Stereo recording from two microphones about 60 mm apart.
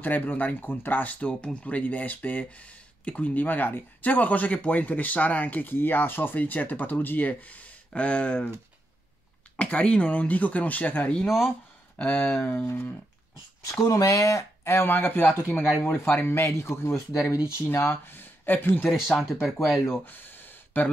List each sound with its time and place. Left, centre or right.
0.0 s speech: left
9.6 s speech: centre
11.2 s speech: centre
12.0 s speech: left
12.6 s speech: left
13.7 s speech: left
14.6 s speech: left
15.4 s speech: left
15.9 s speech: left
18.9 s speech: centre
20.1 s a sound: left